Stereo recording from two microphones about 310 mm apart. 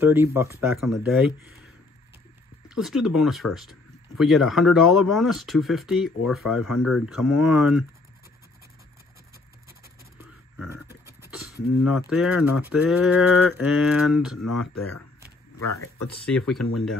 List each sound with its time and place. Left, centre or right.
0.0 s speech: centre
2.7 s speech: centre
10.6 s beatboxing: centre
12.1 s speech: centre
15.7 s speech: left
16.3 s speech: centre